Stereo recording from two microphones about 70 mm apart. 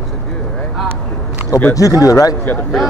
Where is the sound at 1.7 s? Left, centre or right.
Left.